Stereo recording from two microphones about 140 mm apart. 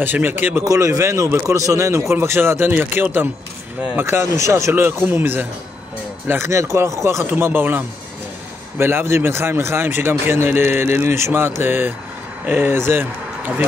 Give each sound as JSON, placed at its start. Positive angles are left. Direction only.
{"t": 0.0, "sound": "speech", "side_deg": -15}